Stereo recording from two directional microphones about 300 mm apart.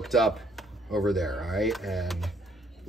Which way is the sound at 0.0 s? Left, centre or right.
Centre.